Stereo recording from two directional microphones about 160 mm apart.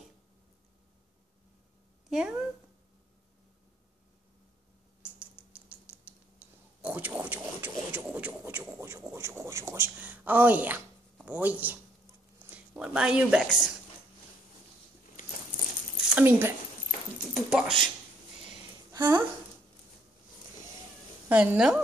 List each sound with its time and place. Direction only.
2.0 s speech: 5° right (ahead or behind)
5.0 s rodents: 10° right (ahead or behind)
12.4 s speech: 5° right (ahead or behind)
16.2 s a woman's voice: 15° right (ahead or behind)
17.3 s speech: centre (ahead or behind)
18.9 s a woman's voice: 25° right (ahead or behind)
21.3 s a woman's voice: 10° right (ahead or behind)